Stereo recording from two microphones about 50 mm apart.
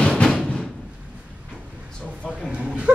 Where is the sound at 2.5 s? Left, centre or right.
Right.